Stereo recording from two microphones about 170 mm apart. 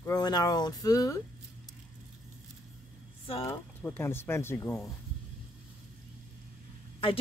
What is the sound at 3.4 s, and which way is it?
Speech, 15° left (ahead or behind).